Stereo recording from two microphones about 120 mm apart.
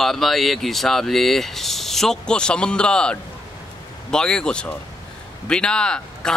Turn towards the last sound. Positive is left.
turn(degrees=5)  # may be behind; listen again after turning